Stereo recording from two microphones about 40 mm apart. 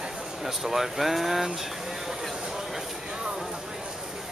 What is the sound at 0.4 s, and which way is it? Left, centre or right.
Speech, centre.